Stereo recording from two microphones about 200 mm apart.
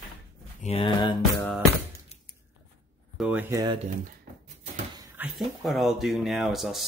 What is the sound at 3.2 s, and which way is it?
Speech, 5° right (ahead or behind).